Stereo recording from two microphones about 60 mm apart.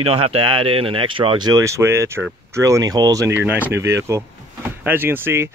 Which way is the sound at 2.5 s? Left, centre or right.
Right.